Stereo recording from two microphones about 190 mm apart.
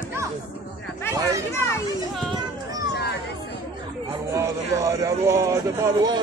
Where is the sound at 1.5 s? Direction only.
15° left (ahead or behind).